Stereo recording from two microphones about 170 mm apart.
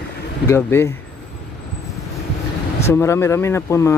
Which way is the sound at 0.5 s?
15° left (ahead or behind).